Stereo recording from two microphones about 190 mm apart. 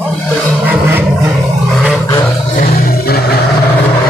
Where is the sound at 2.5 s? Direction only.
50° left (ahead or behind).